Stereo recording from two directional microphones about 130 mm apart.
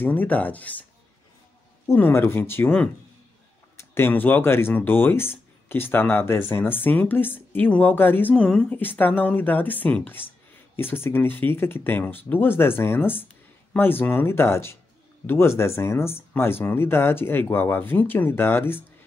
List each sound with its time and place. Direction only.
0.0 s speech: 15° left (ahead or behind)
1.9 s speech: 15° left (ahead or behind)